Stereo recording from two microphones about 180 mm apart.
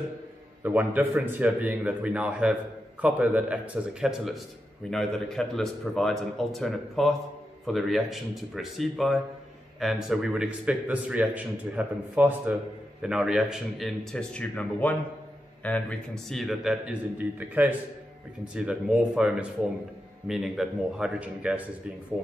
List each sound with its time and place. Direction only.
0.6 s a man's voice: 10° right (ahead or behind)